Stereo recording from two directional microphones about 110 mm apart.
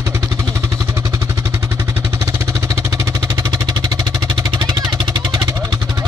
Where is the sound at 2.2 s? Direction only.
30° right (ahead or behind).